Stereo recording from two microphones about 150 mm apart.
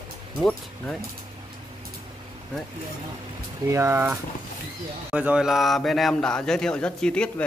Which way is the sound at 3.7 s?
15° right (ahead or behind).